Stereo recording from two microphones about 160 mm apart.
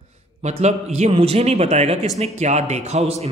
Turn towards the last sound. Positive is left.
turn(degrees=-40)  # may be behind; listen again after turning